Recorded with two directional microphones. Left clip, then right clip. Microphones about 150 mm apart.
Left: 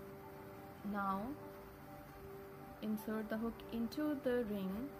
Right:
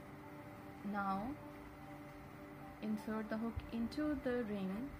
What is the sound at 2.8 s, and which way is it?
Speech, 20° left (ahead or behind).